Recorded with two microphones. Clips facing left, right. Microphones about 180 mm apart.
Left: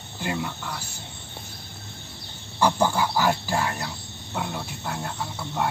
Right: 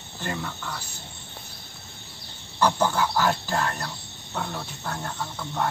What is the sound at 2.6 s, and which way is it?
Speech, 10° left (ahead or behind).